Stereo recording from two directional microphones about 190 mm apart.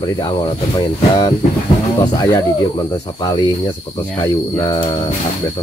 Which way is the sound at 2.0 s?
20° left (ahead or behind).